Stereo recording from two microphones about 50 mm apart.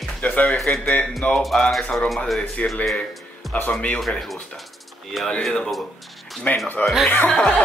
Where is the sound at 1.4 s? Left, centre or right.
Centre.